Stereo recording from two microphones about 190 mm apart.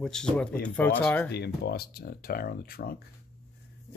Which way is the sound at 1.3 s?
60° left (ahead or behind).